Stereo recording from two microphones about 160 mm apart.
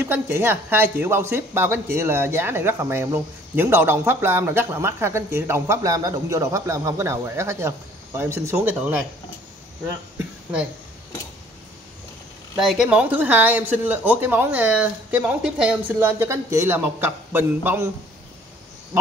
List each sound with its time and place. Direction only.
0.0 s a woman's voice: 15° right (ahead or behind)
12.5 s a woman's voice: centre (ahead or behind)